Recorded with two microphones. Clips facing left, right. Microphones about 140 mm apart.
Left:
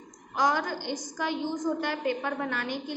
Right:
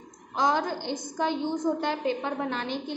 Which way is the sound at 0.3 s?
20° right (ahead or behind).